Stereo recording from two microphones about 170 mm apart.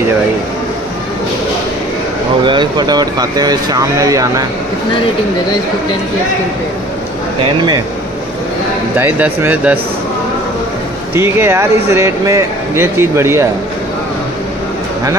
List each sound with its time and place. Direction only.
2.4 s speech: 25° right (ahead or behind)
7.4 s speech: 25° right (ahead or behind)
8.9 s speech: 10° right (ahead or behind)
11.1 s speech: 15° right (ahead or behind)